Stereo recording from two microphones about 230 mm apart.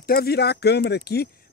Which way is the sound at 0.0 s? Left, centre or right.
Left.